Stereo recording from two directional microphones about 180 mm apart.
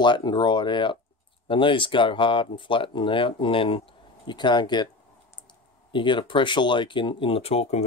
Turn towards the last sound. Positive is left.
turn(degrees=35)  # may be behind; listen again after turning